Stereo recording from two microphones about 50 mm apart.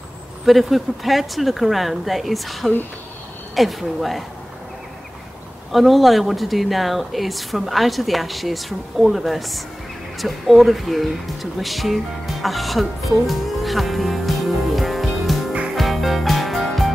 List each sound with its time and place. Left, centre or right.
0.5 s speech: centre
5.7 s speech: centre
11.6 s music: centre